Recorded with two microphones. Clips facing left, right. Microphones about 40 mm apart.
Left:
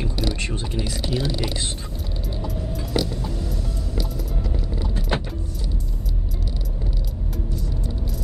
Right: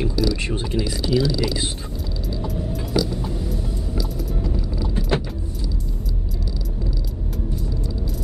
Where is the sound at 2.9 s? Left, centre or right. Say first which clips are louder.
Right 2 dB; left.